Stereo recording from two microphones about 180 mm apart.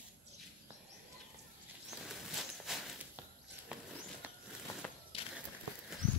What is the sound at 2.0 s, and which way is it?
Walk, centre (ahead or behind).